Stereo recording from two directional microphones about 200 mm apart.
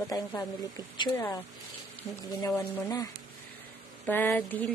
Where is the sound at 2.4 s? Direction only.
10° left (ahead or behind).